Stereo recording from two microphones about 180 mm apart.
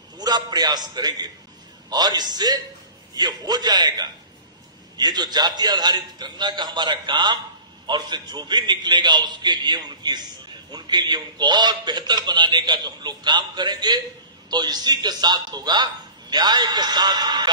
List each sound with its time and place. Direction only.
0.2 s a man's voice: 20° right (ahead or behind)